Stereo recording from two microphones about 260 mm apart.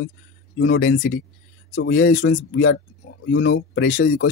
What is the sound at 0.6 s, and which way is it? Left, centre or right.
Speech, left.